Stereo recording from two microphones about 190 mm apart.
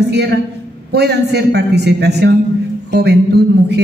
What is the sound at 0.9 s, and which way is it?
Speech, 60° right (ahead or behind).